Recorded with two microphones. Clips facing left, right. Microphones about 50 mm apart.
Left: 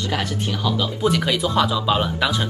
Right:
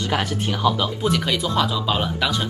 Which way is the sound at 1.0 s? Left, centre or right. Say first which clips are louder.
Left 3 dB; centre.